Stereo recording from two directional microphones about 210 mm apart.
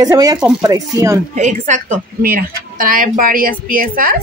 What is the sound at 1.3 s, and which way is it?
A woman's voice, 35° right (ahead or behind).